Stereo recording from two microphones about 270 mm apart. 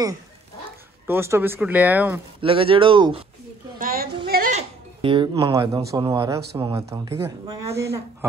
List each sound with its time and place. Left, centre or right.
1.0 s speech: centre
2.4 s speech: centre
3.8 s a sound: right
4.3 s speech: right; by 7.8 s centre